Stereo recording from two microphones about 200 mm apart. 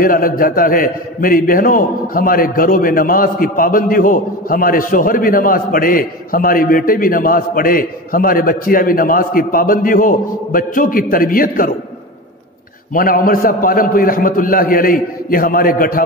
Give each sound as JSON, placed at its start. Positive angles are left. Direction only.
{"t": 0.0, "sound": "a man's voice", "side_deg": 45}
{"t": 12.9, "sound": "a man's voice", "side_deg": 45}